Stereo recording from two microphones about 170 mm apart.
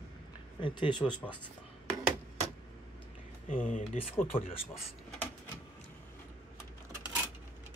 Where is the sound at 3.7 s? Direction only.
50° left (ahead or behind).